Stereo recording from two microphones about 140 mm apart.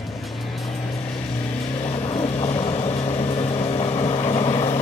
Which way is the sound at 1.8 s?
45° left (ahead or behind).